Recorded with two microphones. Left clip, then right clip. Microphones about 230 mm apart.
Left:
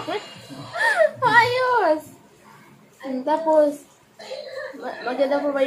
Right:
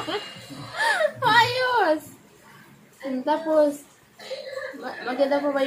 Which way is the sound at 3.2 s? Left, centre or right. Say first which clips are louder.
Left 3 dB; centre.